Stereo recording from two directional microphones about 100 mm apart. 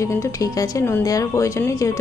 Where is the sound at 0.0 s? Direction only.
35° left (ahead or behind).